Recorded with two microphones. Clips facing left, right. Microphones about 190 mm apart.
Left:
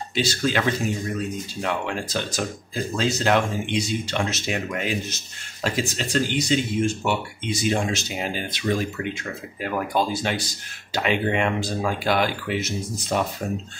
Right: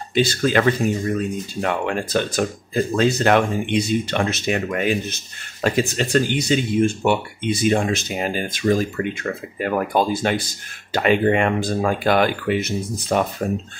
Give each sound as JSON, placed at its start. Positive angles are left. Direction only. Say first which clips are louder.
{"t": 0.1, "sound": "speech", "louder": "right 6 dB", "side_deg": -55}